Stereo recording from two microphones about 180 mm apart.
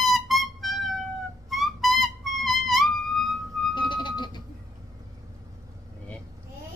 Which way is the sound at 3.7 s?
25° left (ahead or behind).